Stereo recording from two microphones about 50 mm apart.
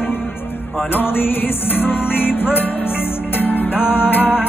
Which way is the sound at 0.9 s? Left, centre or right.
Left.